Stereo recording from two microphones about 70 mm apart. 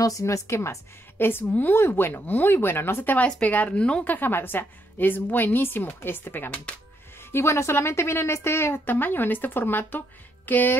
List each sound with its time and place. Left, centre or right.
0.0 s a woman's voice: left
3.2 s a woman's voice: centre
7.3 s a woman's voice: left